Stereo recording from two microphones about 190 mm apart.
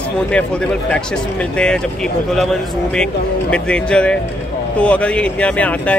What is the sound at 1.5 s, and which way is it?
Speech, 5° left (ahead or behind).